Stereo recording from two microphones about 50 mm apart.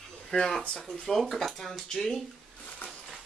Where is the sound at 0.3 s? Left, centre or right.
Centre.